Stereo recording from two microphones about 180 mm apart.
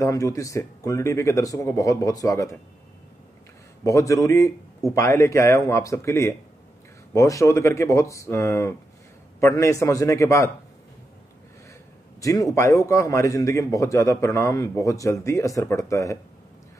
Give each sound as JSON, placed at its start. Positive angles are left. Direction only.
{"t": 0.0, "sound": "a man's voice", "side_deg": 20}
{"t": 3.8, "sound": "a man's voice", "side_deg": 15}
{"t": 12.2, "sound": "a man's voice", "side_deg": 20}